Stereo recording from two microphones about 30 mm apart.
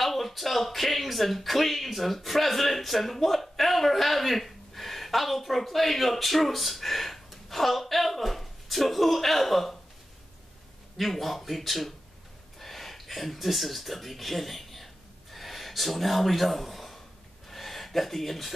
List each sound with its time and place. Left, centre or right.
0.0 s speech: centre
11.0 s speech: centre
15.3 s a sound: centre